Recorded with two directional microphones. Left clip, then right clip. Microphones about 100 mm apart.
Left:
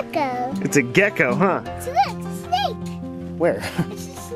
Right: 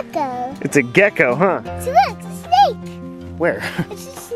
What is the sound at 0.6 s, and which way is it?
Speech, 20° right (ahead or behind).